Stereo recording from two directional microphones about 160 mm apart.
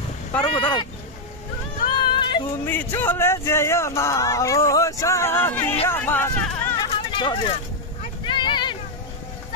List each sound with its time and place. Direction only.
0.4 s speech: 30° left (ahead or behind)
1.9 s a sound: 30° left (ahead or behind)
2.6 s speech: 15° left (ahead or behind)
6.9 s hubbub: 35° left (ahead or behind)
8.3 s vehicle: 30° left (ahead or behind)